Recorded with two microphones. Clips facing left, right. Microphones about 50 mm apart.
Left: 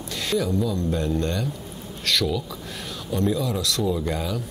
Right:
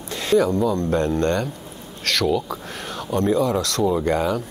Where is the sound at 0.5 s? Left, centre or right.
Right.